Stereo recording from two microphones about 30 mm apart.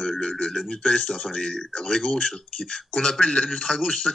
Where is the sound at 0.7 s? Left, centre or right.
Left.